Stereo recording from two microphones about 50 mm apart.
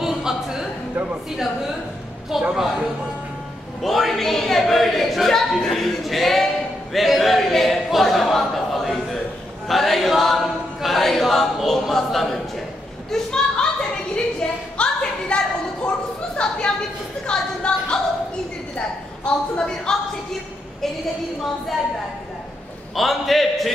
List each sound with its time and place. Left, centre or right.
0.0 s a sound: centre
2.5 s speech: centre
3.8 s a capella: centre
13.1 s a sound: centre
17.3 s a woman's voice: centre
22.9 s a capella: centre